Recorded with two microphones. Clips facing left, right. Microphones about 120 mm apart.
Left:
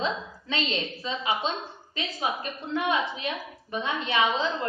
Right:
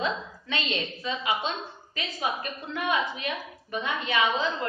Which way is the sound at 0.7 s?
25° left (ahead or behind).